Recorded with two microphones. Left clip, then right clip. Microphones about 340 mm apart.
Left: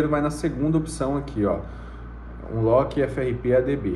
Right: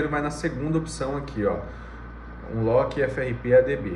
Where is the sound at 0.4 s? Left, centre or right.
Left.